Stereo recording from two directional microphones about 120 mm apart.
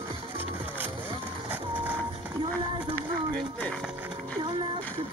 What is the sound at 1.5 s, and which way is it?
Printer, 15° right (ahead or behind).